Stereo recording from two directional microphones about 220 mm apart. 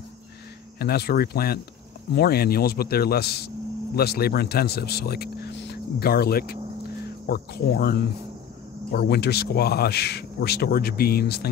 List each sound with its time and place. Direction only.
0.7 s speech: 45° left (ahead or behind)